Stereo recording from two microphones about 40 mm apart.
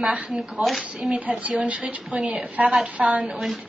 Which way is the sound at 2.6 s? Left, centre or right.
Centre.